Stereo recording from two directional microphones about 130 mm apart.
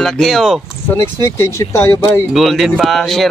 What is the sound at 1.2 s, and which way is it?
Speech, 25° left (ahead or behind).